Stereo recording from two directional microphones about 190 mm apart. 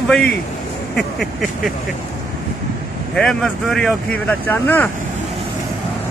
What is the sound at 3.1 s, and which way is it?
Speech, 5° left (ahead or behind).